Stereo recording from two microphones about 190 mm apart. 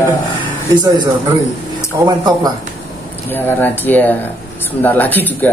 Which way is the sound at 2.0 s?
20° right (ahead or behind).